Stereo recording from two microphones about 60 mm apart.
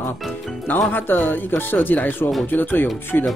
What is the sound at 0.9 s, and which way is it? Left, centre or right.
Speech, left.